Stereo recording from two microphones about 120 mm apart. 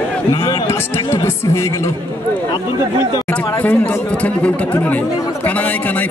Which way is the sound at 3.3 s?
15° left (ahead or behind).